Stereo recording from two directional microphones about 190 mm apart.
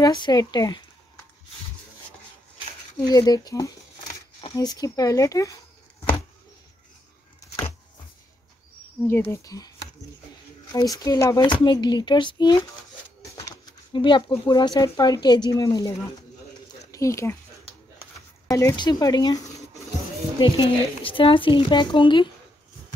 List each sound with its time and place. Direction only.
0.0 s speech: 20° left (ahead or behind)
3.1 s speech: 20° left (ahead or behind)
9.0 s speech: 15° left (ahead or behind)
10.7 s speech: 20° left (ahead or behind)
13.5 s a sound: 25° left (ahead or behind)
14.4 s speech: 20° left (ahead or behind)
18.5 s speech: 15° left (ahead or behind)